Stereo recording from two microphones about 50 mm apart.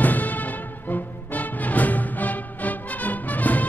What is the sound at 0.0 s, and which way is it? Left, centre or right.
Music, left.